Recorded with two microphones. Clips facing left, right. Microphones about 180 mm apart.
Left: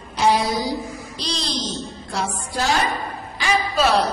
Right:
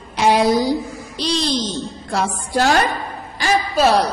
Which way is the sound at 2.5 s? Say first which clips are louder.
Right 6 dB; 70° right (ahead or behind).